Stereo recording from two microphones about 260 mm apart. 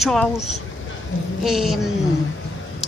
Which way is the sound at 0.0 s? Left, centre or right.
Centre.